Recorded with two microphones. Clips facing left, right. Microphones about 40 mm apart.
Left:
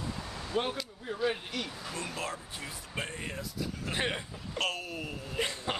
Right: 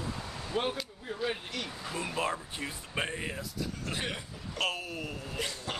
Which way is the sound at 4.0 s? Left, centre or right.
Left.